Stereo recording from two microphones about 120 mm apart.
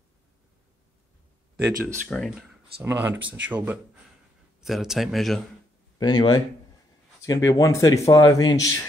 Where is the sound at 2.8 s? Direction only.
15° right (ahead or behind).